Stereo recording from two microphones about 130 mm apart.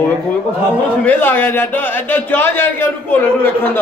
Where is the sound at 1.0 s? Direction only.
15° left (ahead or behind).